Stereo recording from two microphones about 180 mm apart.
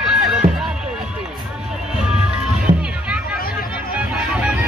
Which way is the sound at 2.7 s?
45° right (ahead or behind).